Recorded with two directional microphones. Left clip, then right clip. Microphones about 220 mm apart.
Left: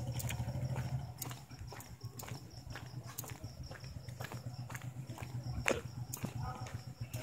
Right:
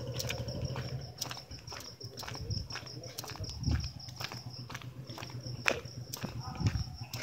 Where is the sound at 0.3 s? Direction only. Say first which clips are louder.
Right 6 dB; 40° right (ahead or behind).